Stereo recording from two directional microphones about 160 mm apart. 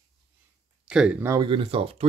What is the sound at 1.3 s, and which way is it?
Speech, 30° right (ahead or behind).